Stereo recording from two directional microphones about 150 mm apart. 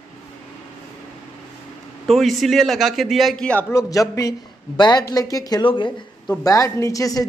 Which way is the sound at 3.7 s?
20° left (ahead or behind).